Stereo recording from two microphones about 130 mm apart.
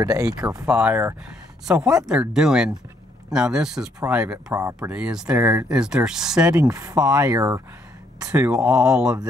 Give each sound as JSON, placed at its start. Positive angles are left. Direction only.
{"t": 0.0, "sound": "speech", "side_deg": -25}
{"t": 0.7, "sound": "speech", "side_deg": -10}
{"t": 4.5, "sound": "speech", "side_deg": -25}
{"t": 4.7, "sound": "speech", "side_deg": -10}
{"t": 6.5, "sound": "speech", "side_deg": -25}
{"t": 8.5, "sound": "speech", "side_deg": -5}